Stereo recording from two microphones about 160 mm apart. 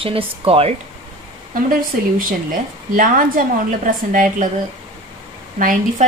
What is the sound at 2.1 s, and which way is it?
A woman's voice, 60° right (ahead or behind).